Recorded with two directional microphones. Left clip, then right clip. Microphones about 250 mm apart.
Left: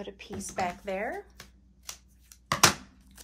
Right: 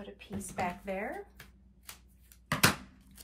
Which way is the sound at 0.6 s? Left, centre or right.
Left.